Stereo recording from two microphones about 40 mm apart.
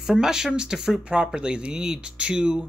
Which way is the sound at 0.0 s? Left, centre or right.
Centre.